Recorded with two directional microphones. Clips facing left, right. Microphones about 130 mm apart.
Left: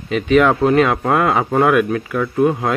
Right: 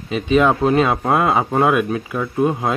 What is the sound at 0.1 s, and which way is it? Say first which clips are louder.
Speech: left 2 dB; 20° right (ahead or behind).